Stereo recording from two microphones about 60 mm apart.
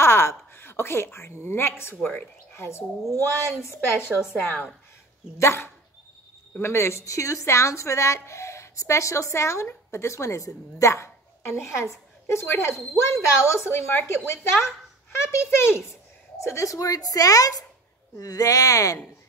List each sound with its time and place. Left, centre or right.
0.0 s a woman's voice: left
2.0 s speech: left
2.5 s a child's voice: left
5.4 s a woman's voice: left